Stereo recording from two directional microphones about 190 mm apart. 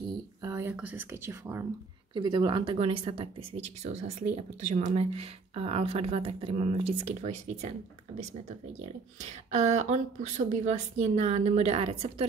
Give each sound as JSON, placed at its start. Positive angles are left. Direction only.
{"t": 0.4, "sound": "speech", "side_deg": -15}
{"t": 2.1, "sound": "speech", "side_deg": -25}
{"t": 9.2, "sound": "speech", "side_deg": -35}